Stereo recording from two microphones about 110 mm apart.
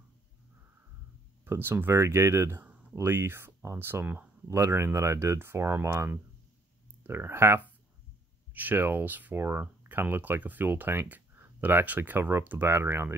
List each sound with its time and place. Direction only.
1.4 s speech: 20° right (ahead or behind)
2.6 s a sound: 15° right (ahead or behind)
3.0 s speech: 20° right (ahead or behind)